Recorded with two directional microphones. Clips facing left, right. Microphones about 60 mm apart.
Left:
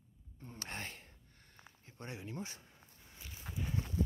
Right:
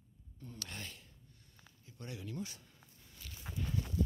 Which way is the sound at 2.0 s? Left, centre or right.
Left.